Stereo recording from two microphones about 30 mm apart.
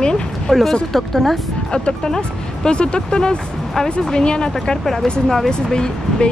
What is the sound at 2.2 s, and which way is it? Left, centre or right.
Speech, left.